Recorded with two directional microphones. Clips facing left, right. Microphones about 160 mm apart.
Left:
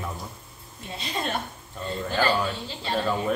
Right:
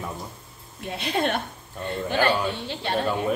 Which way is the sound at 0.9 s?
65° right (ahead or behind).